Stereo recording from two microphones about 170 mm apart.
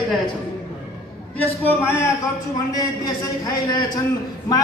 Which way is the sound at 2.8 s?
20° left (ahead or behind).